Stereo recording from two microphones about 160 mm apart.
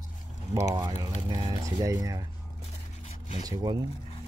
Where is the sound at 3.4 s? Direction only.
25° right (ahead or behind).